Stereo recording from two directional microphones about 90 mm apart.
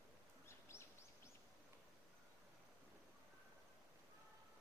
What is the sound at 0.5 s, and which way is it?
Bird, 30° left (ahead or behind).